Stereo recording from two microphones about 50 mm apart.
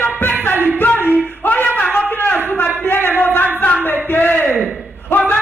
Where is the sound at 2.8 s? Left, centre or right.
Left.